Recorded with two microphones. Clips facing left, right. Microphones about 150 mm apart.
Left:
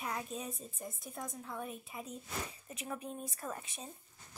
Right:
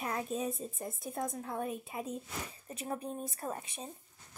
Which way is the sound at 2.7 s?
35° right (ahead or behind).